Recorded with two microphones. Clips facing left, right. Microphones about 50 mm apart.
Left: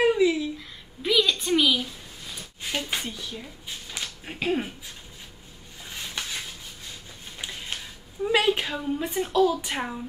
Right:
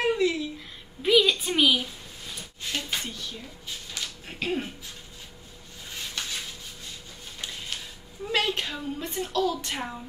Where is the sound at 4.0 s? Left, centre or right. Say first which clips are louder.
Left 2 dB; centre.